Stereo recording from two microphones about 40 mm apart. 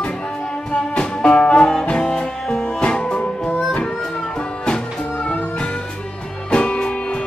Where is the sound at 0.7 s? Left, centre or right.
Left.